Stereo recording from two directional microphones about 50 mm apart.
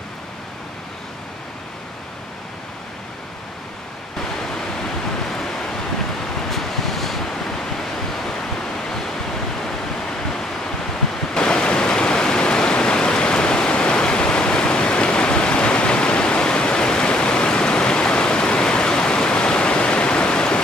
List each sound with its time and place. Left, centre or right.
5.3 s waves: centre
11.3 s waterfall: centre